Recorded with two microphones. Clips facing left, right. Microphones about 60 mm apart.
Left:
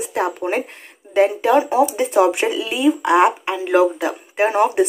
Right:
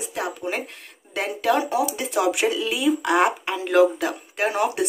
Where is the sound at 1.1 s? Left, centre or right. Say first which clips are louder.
Left 7 dB; left.